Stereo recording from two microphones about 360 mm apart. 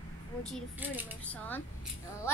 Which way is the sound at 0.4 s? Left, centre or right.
Centre.